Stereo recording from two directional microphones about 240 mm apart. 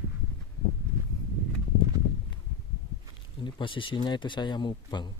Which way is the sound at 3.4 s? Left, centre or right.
Left.